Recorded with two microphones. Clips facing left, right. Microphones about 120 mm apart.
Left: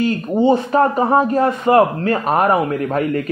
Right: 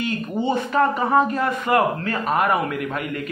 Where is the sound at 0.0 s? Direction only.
35° left (ahead or behind).